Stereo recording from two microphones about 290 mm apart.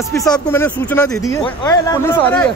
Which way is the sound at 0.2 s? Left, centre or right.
Centre.